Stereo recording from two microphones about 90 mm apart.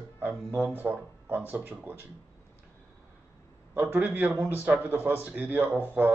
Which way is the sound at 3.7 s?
20° right (ahead or behind).